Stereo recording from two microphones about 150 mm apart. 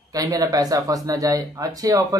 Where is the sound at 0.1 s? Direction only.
25° right (ahead or behind).